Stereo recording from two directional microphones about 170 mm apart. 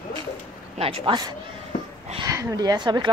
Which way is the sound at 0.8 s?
30° right (ahead or behind).